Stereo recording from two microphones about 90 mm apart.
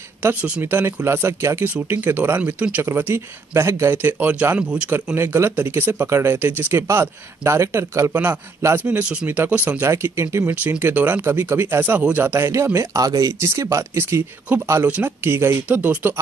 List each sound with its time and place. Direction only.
0.4 s speech: 25° right (ahead or behind)
5.1 s speech: 30° right (ahead or behind)
8.8 s speech: 15° right (ahead or behind); by 10.5 s 30° right (ahead or behind)
10.5 s speech: 15° right (ahead or behind)
14.9 s speech: 20° right (ahead or behind)